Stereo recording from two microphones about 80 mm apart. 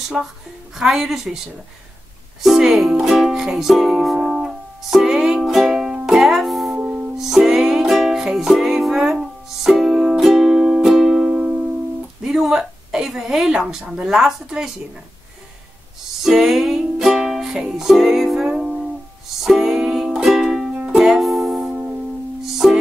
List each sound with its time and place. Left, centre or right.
0.2 s a woman's voice: centre
2.4 s a woman's voice: centre
2.9 s music: centre
6.8 s music: centre
7.2 s music: centre
12.2 s a woman's voice: centre
16.3 s music: centre
21.7 s music: centre
22.4 s music: centre